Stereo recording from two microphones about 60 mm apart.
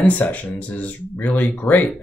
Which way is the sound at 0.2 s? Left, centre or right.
Left.